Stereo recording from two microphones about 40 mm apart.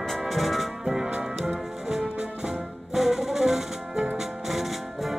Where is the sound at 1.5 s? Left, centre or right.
Centre.